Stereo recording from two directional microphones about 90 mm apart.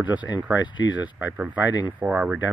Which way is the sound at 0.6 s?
55° left (ahead or behind).